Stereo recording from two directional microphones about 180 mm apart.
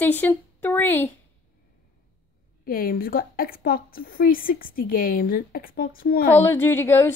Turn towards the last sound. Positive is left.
turn(degrees=15)  # may be behind; listen again after turning